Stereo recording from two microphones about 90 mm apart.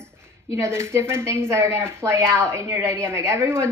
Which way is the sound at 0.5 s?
30° right (ahead or behind).